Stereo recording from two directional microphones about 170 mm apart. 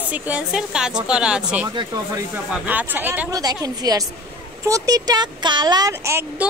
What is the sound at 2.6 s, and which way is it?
Speech, 10° right (ahead or behind).